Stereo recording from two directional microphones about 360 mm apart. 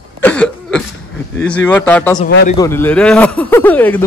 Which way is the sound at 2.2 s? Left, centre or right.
Left.